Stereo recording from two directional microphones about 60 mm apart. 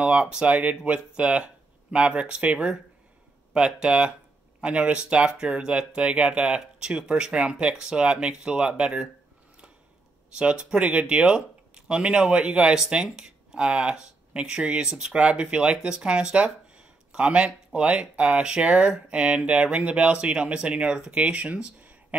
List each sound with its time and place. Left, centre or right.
0.0 s speech: centre
10.4 s speech: centre